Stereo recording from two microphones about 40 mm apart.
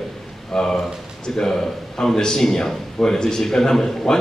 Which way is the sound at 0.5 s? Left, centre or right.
Centre.